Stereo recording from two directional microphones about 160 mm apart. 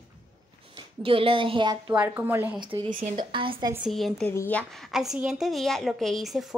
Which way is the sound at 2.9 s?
60° right (ahead or behind).